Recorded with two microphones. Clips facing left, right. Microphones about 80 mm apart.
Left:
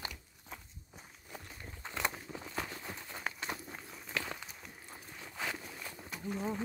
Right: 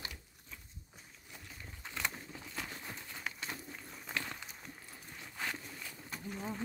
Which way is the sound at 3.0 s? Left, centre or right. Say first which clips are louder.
Left 5 dB; left.